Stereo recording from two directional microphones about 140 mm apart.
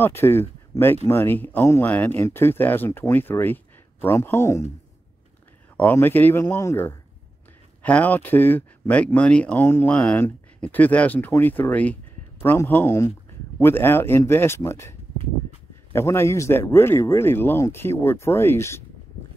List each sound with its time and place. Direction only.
0.0 s speech: 15° left (ahead or behind)
5.8 s speech: 15° left (ahead or behind)